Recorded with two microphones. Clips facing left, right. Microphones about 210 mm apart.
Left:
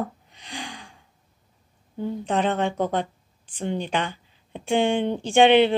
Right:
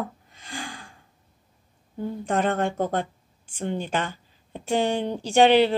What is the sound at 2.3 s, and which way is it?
Speech, 45° right (ahead or behind).